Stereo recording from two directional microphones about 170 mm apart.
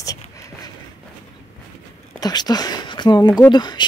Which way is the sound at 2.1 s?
25° left (ahead or behind).